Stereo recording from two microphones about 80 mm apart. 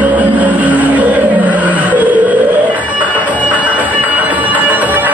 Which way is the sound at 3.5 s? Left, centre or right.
Centre.